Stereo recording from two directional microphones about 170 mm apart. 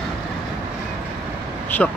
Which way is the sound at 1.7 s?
10° left (ahead or behind).